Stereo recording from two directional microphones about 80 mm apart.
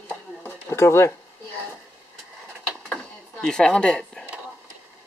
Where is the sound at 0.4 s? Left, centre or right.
Left.